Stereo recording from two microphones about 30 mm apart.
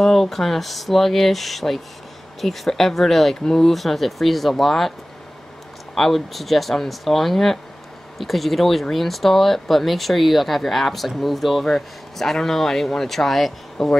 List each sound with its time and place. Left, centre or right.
0.0 s speech: centre
3.4 s speech: centre
3.7 s speech: centre
5.9 s speech: centre
11.6 s speech: centre